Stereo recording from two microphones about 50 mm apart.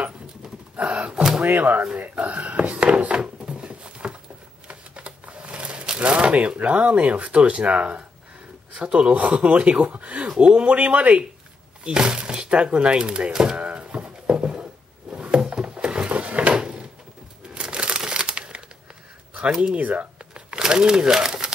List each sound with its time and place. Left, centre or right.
0.7 s door: right
1.4 s speech: right
2.0 s a sound: right
4.6 s shuffling cards: right
8.7 s speech: right
11.8 s speech: centre
13.6 s a sound: right
16.1 s drawer open or close: right
16.5 s a sound: centre
17.6 s crumpling: centre
19.7 s crumpling: right; by 21.5 s centre